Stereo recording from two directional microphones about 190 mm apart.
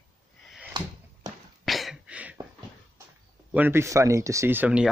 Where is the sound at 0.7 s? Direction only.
25° right (ahead or behind).